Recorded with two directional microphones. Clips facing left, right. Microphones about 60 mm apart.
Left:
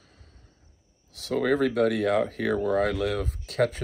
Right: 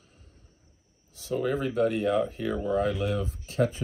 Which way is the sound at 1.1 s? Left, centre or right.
Left.